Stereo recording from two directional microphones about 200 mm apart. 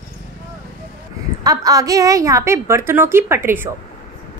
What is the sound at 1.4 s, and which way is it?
A woman's voice, 20° right (ahead or behind).